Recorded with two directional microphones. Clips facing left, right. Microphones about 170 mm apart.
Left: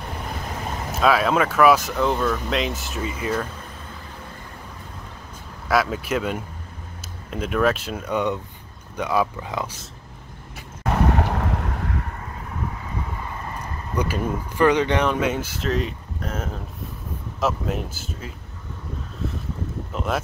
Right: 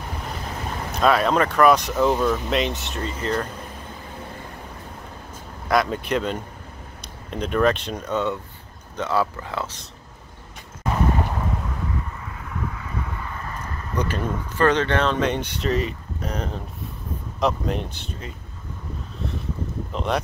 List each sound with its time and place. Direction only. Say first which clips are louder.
0.9 s speech: even; 5° left (ahead or behind)
2.5 s speech: right 1 dB; centre (ahead or behind)
5.7 s speech: even; 5° left (ahead or behind)
10.8 s boat: left 2 dB; 70° left (ahead or behind)
13.6 s speech: left 1 dB; 10° left (ahead or behind)
19.9 s speech: right 1 dB; 5° left (ahead or behind)